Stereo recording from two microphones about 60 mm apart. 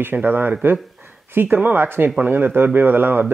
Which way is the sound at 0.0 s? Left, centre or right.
Right.